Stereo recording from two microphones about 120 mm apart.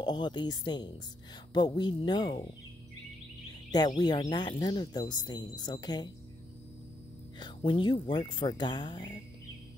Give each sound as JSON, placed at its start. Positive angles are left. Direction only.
{"t": 0.0, "sound": "speech", "side_deg": 40}
{"t": 3.7, "sound": "speech", "side_deg": 35}
{"t": 7.3, "sound": "speech", "side_deg": 40}